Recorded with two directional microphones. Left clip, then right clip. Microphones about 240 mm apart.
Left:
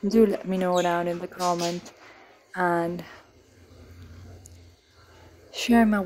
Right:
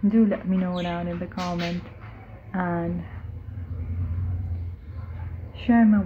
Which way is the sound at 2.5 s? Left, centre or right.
Left.